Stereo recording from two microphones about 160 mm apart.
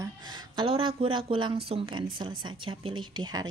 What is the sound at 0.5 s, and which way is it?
A woman's voice, 35° right (ahead or behind).